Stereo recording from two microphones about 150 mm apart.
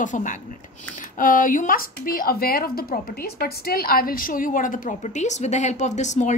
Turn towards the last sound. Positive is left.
turn(degrees=50)  # may be behind; listen again after turning